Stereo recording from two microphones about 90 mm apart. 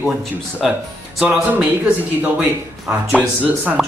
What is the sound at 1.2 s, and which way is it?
Speech, 15° right (ahead or behind).